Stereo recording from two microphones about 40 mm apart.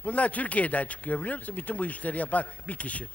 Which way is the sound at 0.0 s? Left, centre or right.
Left.